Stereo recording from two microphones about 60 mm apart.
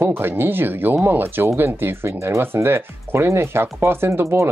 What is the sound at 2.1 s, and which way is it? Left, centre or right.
Speech, right.